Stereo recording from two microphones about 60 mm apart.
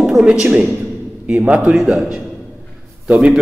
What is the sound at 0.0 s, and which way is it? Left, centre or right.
Speech, centre.